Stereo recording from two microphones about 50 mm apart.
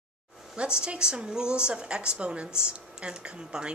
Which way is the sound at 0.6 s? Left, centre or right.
Centre.